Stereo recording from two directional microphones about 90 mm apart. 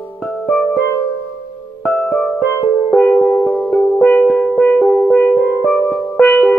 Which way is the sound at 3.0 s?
15° left (ahead or behind).